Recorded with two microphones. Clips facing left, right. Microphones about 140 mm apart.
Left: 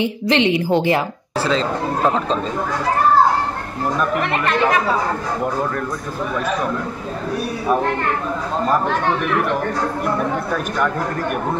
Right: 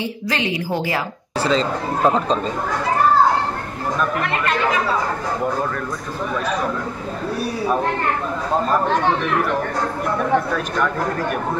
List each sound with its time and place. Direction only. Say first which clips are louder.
0.0 s a woman's voice: left 6 dB; 20° left (ahead or behind)
1.4 s speech: even; centre (ahead or behind)